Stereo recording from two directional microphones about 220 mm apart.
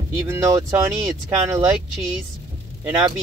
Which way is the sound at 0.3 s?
15° right (ahead or behind).